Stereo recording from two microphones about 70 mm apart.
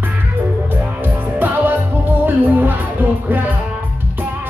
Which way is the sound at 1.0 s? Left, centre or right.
Right.